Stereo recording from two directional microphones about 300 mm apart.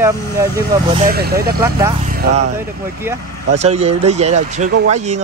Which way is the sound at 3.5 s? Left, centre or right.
Right.